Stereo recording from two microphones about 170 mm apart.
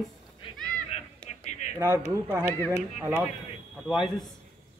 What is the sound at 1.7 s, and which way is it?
Speech, 15° right (ahead or behind).